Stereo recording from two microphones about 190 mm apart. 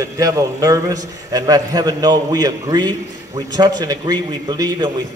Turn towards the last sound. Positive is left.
turn(degrees=-20)  # may be behind; listen again after turning